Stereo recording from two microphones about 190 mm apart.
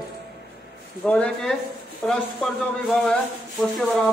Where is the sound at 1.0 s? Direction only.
5° left (ahead or behind).